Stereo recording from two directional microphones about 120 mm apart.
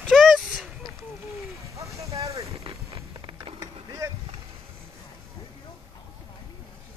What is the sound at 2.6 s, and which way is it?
Music, 40° right (ahead or behind).